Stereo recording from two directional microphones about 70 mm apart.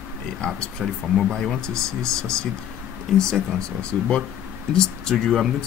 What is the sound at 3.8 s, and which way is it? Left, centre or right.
Speech, centre.